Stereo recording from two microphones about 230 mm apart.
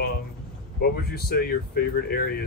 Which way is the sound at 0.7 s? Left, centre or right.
Left.